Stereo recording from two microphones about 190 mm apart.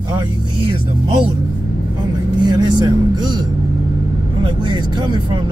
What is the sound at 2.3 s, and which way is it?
Speech, 25° right (ahead or behind).